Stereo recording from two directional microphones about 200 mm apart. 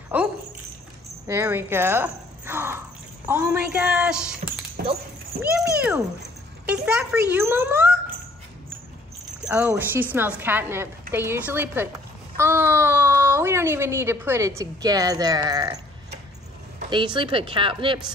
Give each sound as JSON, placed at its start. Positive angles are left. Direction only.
{"t": 0.1, "sound": "a sound", "side_deg": -10}
{"t": 1.2, "sound": "a woman's voice", "side_deg": -10}
{"t": 4.8, "sound": "speech", "side_deg": -50}
{"t": 5.4, "sound": "a woman's voice", "side_deg": -5}
{"t": 9.2, "sound": "a child's voice", "side_deg": -5}
{"t": 16.9, "sound": "speech", "side_deg": -25}